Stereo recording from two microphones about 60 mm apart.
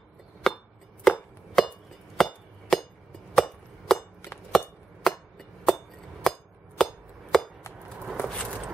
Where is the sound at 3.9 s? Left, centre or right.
Centre.